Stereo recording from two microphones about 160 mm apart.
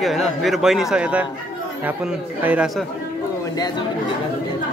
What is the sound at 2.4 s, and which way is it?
Speech, 10° right (ahead or behind).